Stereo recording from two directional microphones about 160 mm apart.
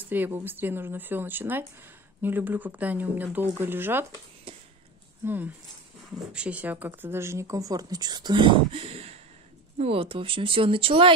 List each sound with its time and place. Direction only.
0.0 s speech: 10° right (ahead or behind)
4.5 s a sound: 35° right (ahead or behind)
5.2 s speech: 10° right (ahead or behind); by 11.1 s 35° right (ahead or behind)